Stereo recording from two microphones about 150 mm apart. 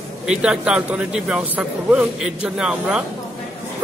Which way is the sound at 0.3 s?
5° right (ahead or behind).